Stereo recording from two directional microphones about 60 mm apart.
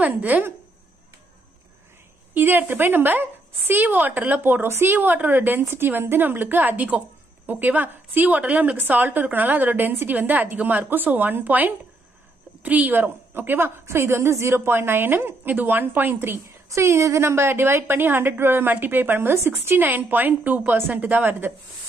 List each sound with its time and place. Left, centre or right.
0.0 s a woman's voice: right
2.3 s a woman's voice: right
4.9 s a woman's voice: right
16.6 s a woman's voice: right